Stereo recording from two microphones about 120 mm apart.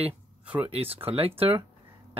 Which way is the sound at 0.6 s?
55° right (ahead or behind).